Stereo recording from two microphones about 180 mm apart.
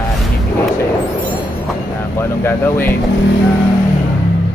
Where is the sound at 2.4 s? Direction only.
10° left (ahead or behind).